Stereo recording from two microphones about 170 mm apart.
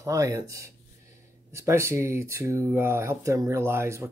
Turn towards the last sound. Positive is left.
turn(degrees=-15)  # may be behind; listen again after turning